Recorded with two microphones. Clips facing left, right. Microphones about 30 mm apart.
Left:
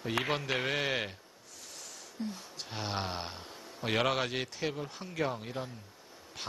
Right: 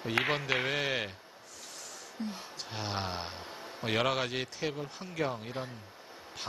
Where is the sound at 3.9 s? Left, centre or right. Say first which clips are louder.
Even; centre.